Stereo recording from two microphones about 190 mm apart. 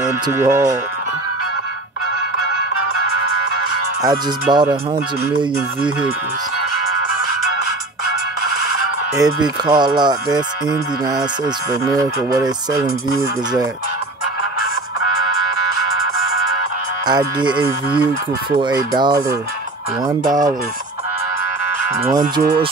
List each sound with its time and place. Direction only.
0.3 s speech: 15° right (ahead or behind)
4.0 s speech: 20° right (ahead or behind)
9.1 s speech: 20° right (ahead or behind)
17.0 s speech: 20° right (ahead or behind)